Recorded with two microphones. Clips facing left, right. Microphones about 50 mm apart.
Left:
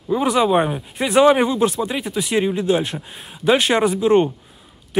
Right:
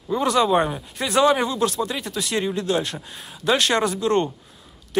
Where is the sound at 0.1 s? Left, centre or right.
Centre.